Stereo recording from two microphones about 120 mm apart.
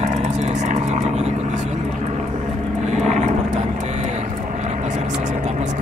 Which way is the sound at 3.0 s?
75° right (ahead or behind).